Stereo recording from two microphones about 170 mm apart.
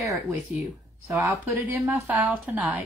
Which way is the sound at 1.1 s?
Centre (ahead or behind).